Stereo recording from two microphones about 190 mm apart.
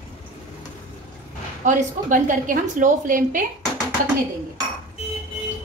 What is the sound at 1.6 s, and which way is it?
A woman's voice, 45° right (ahead or behind).